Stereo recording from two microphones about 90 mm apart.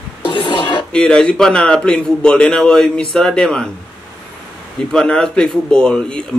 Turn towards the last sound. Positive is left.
turn(degrees=10)  # may be behind; listen again after turning